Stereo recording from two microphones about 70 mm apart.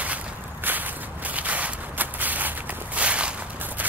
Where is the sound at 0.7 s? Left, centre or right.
Right.